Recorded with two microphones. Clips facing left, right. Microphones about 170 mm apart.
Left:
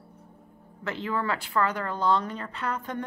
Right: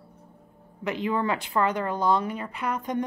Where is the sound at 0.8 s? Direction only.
15° right (ahead or behind).